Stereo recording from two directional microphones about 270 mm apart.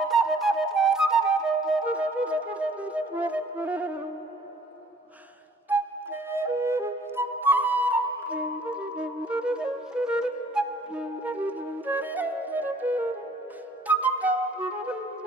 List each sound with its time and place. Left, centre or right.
0.0 s flute: centre
5.7 s flute: centre